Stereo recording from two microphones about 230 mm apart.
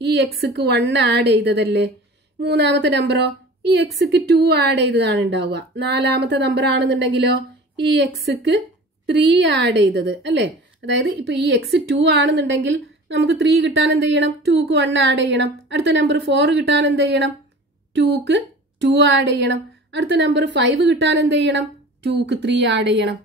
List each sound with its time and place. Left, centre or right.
0.0 s a woman's voice: right